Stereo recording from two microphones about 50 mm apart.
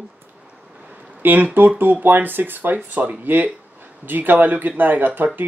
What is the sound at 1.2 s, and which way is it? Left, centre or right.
Speech, right.